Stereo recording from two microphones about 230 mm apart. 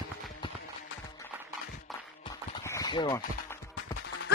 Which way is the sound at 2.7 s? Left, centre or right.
Centre.